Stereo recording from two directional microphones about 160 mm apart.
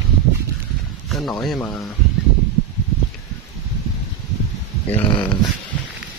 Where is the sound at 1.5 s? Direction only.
15° left (ahead or behind).